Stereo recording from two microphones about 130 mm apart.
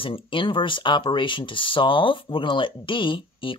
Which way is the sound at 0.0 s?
40° left (ahead or behind).